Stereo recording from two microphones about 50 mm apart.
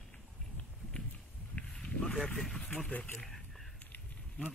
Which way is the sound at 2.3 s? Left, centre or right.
Centre.